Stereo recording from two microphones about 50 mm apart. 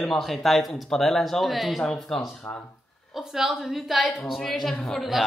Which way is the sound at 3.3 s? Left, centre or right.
Centre.